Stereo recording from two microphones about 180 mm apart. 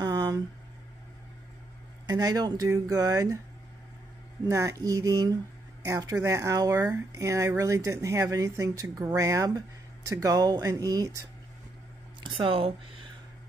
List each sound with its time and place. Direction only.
0.0 s a sound: 20° right (ahead or behind)
2.0 s speech: 20° right (ahead or behind)
4.5 s speech: 15° right (ahead or behind)